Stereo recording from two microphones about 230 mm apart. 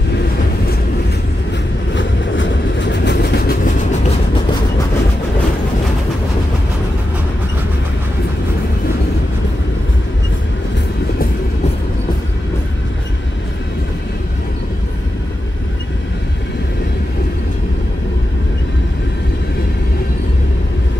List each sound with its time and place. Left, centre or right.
2.0 s train: left